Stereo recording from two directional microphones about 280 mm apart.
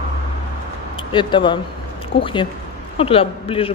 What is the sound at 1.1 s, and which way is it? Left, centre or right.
A man's voice, centre.